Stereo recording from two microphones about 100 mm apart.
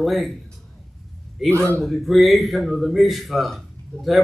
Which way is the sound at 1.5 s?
30° right (ahead or behind).